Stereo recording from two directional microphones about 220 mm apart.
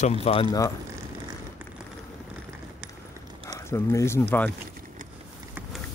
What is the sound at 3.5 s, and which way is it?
Speech, 10° left (ahead or behind).